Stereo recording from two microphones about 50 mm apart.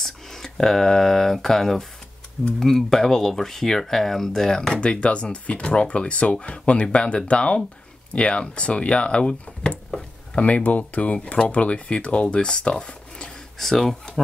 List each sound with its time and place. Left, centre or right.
0.0 s speech: centre
4.7 s speech: left
10.3 s speech: left
13.6 s speech: centre